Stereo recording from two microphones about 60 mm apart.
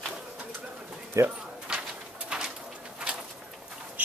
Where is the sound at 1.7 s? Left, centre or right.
Centre.